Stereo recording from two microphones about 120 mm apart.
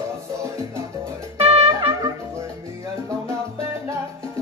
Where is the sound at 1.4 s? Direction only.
55° right (ahead or behind).